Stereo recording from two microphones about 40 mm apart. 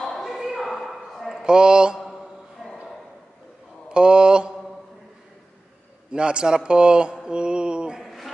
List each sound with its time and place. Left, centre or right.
0.2 s a sound: centre
1.4 s a man's voice: centre
3.9 s mantra: right
6.1 s a man's voice: right
7.2 s mantra: right
8.0 s a sound: centre